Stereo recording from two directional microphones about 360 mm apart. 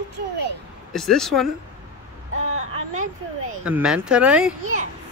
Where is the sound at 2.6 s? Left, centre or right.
Centre.